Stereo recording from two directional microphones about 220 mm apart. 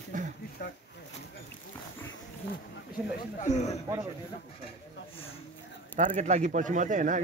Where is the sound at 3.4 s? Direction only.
30° left (ahead or behind).